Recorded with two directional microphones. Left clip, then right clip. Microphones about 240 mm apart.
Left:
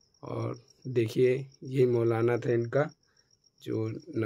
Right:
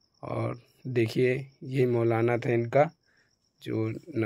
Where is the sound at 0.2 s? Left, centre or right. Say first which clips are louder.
Right 3 dB; centre.